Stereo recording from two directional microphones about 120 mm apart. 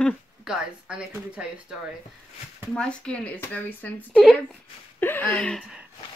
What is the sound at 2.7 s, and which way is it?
Speech, 10° left (ahead or behind).